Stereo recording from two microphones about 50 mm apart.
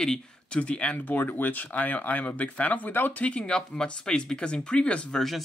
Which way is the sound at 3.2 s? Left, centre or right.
Left.